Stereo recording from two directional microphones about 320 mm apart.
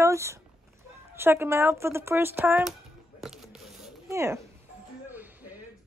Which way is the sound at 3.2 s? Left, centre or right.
Centre.